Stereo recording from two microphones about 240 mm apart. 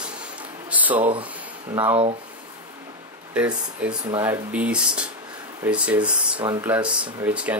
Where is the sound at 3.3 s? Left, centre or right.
Centre.